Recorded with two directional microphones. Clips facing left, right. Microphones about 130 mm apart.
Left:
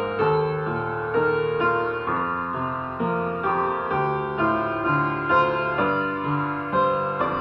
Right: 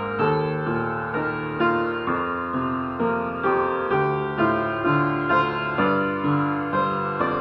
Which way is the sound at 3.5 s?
20° left (ahead or behind).